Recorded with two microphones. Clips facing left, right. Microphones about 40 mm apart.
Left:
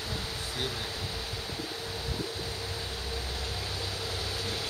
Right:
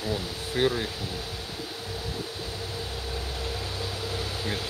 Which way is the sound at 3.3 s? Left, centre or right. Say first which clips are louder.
Right 3 dB; centre.